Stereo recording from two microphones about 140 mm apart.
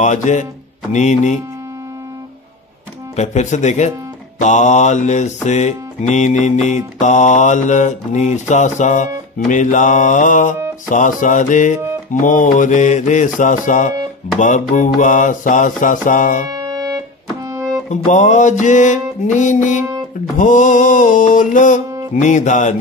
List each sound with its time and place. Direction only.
0.0 s music: 60° left (ahead or behind)
3.2 s music: 55° left (ahead or behind)
14.4 s mantra: 65° left (ahead or behind)
16.4 s keyboard: 25° right (ahead or behind)
17.8 s music: 60° left (ahead or behind)
20.3 s mantra: 65° left (ahead or behind)
22.1 s music: 60° left (ahead or behind)